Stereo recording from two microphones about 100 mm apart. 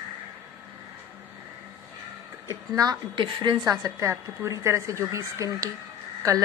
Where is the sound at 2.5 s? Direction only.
40° right (ahead or behind).